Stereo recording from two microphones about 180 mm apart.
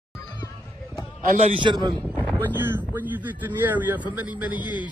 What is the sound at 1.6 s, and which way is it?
Speech, 25° right (ahead or behind).